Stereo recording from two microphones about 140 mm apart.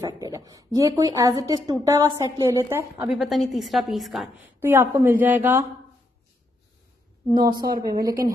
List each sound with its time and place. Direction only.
0.0 s a woman's voice: 25° right (ahead or behind)
3.2 s a woman's voice: centre (ahead or behind)
4.6 s a woman's voice: 15° right (ahead or behind)
7.5 s a woman's voice: 30° right (ahead or behind)